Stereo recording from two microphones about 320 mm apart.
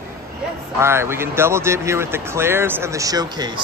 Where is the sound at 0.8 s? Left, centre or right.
Centre.